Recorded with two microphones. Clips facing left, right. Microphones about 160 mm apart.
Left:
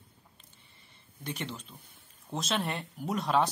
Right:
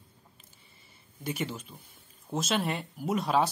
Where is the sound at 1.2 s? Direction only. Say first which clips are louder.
Right 4 dB; 5° right (ahead or behind).